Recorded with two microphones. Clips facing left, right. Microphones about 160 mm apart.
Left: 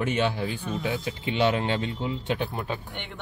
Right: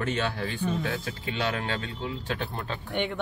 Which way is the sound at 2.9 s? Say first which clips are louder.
Right 10 dB; 70° right (ahead or behind).